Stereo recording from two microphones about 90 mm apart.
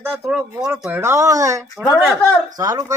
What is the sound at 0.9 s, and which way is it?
Speech, 30° right (ahead or behind).